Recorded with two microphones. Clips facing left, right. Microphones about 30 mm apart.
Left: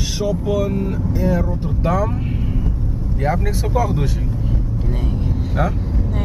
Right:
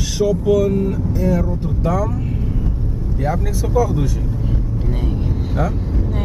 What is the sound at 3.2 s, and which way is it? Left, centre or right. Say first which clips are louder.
Speech: left 1 dB; left.